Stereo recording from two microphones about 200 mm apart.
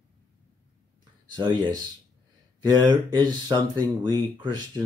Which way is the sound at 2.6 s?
20° right (ahead or behind).